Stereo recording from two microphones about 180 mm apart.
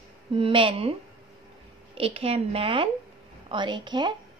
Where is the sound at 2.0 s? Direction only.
35° right (ahead or behind).